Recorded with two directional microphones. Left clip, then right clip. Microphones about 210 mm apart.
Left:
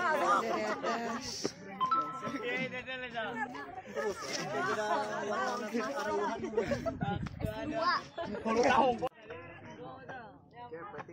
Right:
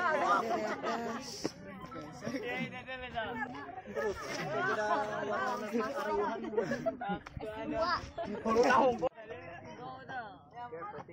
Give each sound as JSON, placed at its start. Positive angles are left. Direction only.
{"t": 0.0, "sound": "a sound", "side_deg": 50}
{"t": 1.2, "sound": "music", "side_deg": 0}
{"t": 2.4, "sound": "chatter", "side_deg": 45}
{"t": 8.4, "sound": "speech", "side_deg": -20}